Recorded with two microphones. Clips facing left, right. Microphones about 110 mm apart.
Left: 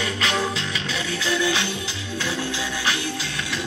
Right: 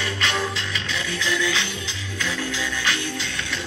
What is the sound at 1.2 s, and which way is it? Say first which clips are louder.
Music: left 2 dB; 15° left (ahead or behind).